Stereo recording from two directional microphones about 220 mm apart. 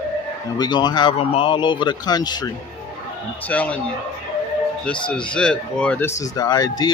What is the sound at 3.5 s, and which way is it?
Speech, 5° left (ahead or behind).